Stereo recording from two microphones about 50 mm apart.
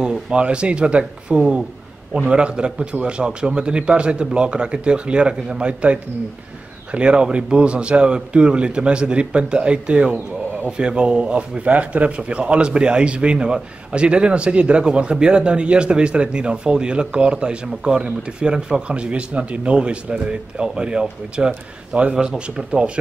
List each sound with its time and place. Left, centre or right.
0.0 s a man's voice: centre
10.1 s speech: right
10.8 s a man's voice: centre
22.1 s speech: centre